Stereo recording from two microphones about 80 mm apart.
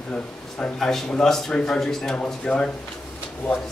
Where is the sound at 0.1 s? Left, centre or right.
Centre.